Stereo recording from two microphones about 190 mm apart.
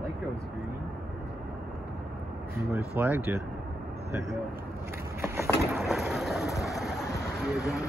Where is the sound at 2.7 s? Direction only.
10° right (ahead or behind).